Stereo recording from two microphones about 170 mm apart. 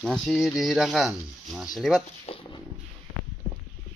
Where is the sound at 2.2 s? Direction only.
30° left (ahead or behind).